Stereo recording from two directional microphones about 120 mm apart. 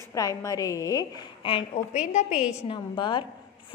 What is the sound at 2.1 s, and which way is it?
Speech, 80° left.